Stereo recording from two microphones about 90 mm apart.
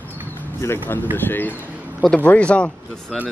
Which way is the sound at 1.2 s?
20° left (ahead or behind).